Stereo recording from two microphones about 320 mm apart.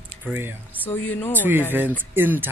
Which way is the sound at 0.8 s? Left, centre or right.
Centre.